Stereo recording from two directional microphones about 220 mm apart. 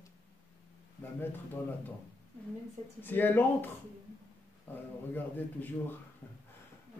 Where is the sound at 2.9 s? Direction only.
10° left (ahead or behind).